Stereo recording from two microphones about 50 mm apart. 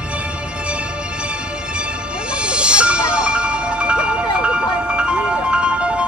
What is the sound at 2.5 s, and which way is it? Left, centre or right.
Music, right.